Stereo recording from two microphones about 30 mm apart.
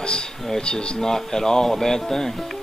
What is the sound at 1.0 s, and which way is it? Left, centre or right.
Speech, centre.